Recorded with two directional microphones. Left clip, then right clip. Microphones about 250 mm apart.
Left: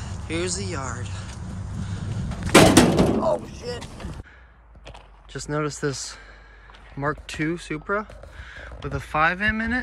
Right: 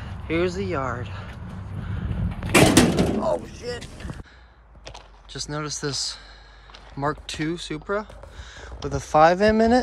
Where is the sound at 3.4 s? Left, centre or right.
Centre.